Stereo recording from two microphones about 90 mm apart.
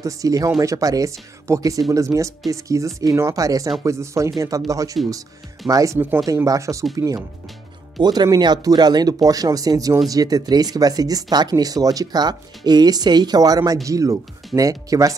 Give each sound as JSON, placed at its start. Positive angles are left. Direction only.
{"t": 0.0, "sound": "speech", "side_deg": -40}
{"t": 5.9, "sound": "speech", "side_deg": -20}
{"t": 6.2, "sound": "speech", "side_deg": -40}